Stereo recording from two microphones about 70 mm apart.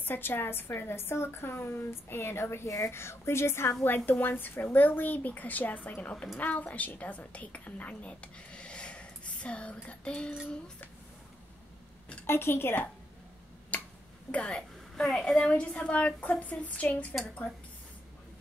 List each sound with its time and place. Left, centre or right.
0.0 s a woman's voice: left
12.3 s a woman's voice: left
13.7 s finger snapping: left
14.3 s a woman's voice: centre